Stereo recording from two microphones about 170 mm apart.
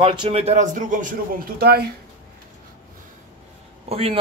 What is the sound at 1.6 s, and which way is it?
Speech, 70° right (ahead or behind).